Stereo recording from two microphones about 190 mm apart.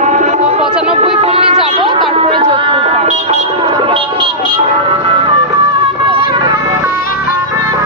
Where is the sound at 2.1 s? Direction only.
30° right (ahead or behind).